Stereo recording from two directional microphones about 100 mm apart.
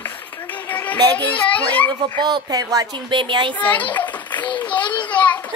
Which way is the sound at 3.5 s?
15° left (ahead or behind).